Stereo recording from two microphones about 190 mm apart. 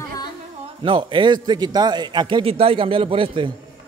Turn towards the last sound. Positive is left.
turn(degrees=-25)  # may be behind; listen again after turning